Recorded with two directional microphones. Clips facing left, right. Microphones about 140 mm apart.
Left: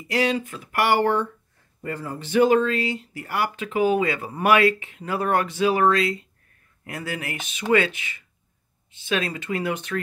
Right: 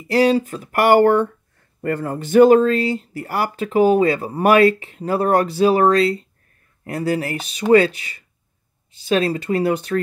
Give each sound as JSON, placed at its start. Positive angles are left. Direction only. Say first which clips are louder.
{"t": 0.1, "sound": "speech", "louder": "right 7 dB", "side_deg": -35}